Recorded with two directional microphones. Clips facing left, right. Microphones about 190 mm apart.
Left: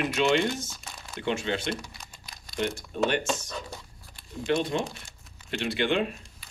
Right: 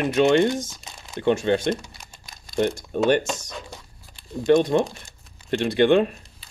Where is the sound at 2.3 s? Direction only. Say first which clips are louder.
Right 7 dB; 50° right (ahead or behind).